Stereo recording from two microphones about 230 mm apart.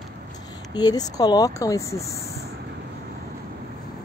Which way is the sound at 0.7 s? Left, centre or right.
Centre.